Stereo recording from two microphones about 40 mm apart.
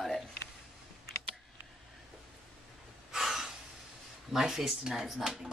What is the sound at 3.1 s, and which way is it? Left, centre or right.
Gasp, centre.